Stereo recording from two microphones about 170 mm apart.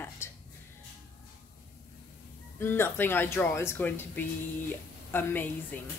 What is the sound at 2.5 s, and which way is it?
A woman's voice, 15° left (ahead or behind).